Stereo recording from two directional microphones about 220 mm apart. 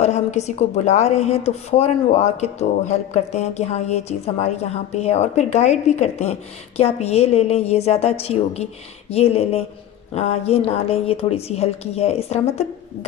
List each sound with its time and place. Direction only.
0.0 s a woman's voice: 30° left (ahead or behind)